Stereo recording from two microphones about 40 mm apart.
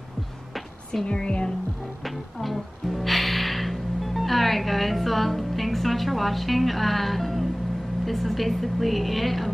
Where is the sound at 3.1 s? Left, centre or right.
Centre.